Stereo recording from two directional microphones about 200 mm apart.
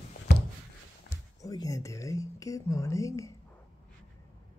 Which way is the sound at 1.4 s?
15° left (ahead or behind).